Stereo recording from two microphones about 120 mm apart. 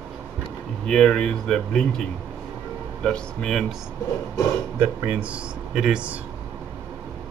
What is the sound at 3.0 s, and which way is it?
Speech, 5° left (ahead or behind).